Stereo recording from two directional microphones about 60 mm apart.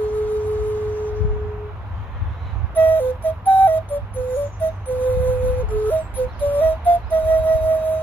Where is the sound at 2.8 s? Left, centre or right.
Left.